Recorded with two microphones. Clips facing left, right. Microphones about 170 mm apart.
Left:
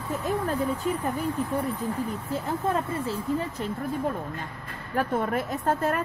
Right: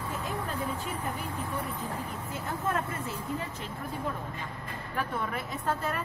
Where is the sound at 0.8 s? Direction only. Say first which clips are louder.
Left 8 dB; 40° left (ahead or behind).